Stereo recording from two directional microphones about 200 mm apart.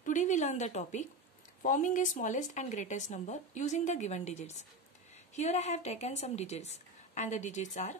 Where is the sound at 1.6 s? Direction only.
40° left (ahead or behind).